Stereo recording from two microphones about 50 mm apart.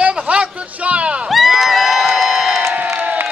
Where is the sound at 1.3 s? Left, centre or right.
Centre.